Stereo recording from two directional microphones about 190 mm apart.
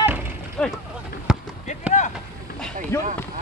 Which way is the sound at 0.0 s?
10° right (ahead or behind).